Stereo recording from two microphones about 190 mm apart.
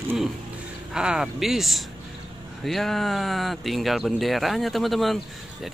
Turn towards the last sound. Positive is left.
turn(degrees=0)  # may be behind; listen again after turning